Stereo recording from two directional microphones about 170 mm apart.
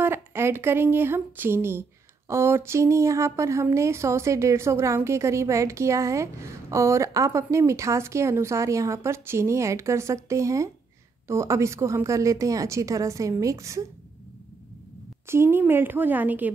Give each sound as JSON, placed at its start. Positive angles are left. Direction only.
{"t": 0.0, "sound": "speech", "side_deg": -15}
{"t": 15.2, "sound": "speech", "side_deg": -15}